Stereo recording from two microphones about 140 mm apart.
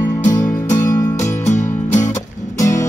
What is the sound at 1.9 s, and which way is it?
Music, 60° left (ahead or behind).